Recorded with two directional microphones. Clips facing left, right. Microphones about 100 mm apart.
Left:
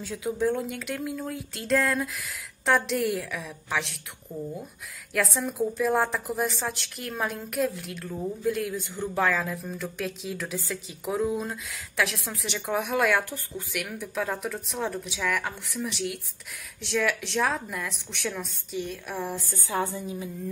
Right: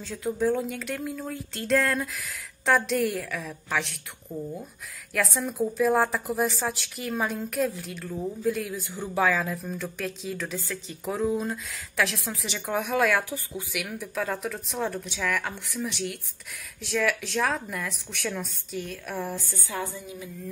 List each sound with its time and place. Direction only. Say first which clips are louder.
0.0 s a woman's voice: even; 5° left (ahead or behind)
19.5 s a woman's voice: left 4 dB; 30° left (ahead or behind)